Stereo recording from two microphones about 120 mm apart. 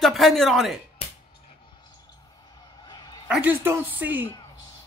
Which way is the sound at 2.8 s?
35° left (ahead or behind).